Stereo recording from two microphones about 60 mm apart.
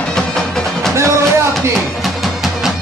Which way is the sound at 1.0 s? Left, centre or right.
Right.